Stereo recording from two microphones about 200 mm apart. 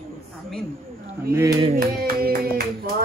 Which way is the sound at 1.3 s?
15° right (ahead or behind).